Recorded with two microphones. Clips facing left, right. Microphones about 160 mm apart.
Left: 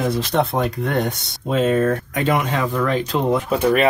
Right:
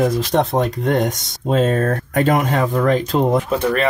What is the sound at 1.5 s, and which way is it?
Speech, 40° right (ahead or behind).